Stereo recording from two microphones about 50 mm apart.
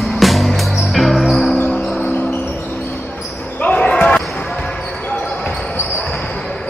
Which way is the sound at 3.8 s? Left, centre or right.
Left.